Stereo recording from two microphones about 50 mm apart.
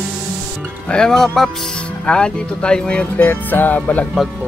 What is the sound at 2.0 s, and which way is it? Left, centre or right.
Speech, centre.